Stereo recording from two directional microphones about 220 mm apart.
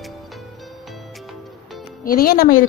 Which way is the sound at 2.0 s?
40° left (ahead or behind).